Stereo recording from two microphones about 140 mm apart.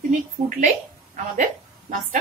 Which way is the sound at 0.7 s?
65° right (ahead or behind).